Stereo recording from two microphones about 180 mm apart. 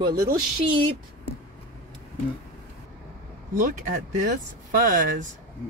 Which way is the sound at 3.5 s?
45° right (ahead or behind).